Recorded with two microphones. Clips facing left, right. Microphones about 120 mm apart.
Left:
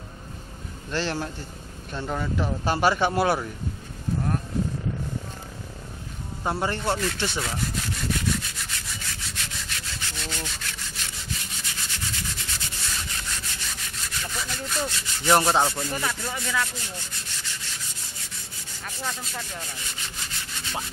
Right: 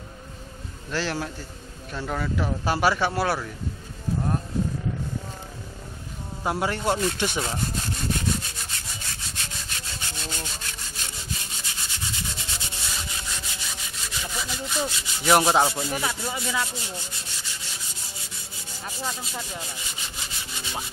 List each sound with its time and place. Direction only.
0.9 s speech: 5° right (ahead or behind)
6.4 s speech: 10° right (ahead or behind)
7.4 s wood: 30° right (ahead or behind)
9.7 s rub: 25° right (ahead or behind)
12.9 s rub: 10° right (ahead or behind)
18.9 s rub: 10° right (ahead or behind)